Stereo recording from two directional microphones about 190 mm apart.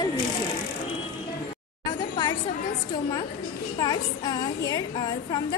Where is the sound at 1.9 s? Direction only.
20° left (ahead or behind).